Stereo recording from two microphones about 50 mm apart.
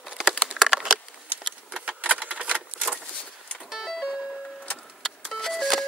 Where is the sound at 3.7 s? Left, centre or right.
Centre.